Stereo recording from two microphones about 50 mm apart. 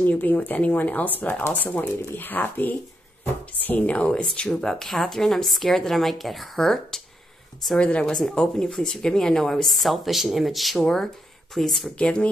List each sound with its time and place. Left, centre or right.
0.0 s speech: left
4.2 s a woman's voice: centre
7.7 s a woman's voice: centre
12.0 s a woman's voice: left